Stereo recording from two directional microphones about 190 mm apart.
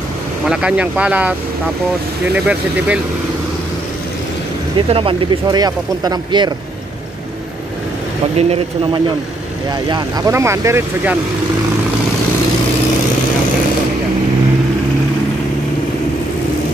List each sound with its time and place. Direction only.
0.5 s speech: 5° right (ahead or behind)
2.3 s speech: 5° right (ahead or behind)
4.7 s speech: 30° right (ahead or behind)
8.4 s speech: 30° right (ahead or behind)